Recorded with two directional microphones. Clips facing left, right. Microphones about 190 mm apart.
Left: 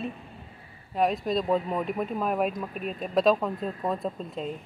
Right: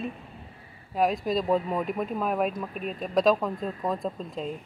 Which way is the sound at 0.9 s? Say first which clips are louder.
Even; centre (ahead or behind).